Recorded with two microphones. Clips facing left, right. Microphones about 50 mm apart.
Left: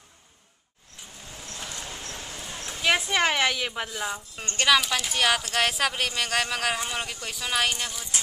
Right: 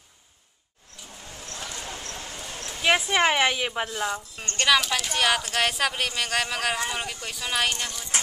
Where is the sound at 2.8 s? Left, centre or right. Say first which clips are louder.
Right 2 dB; centre.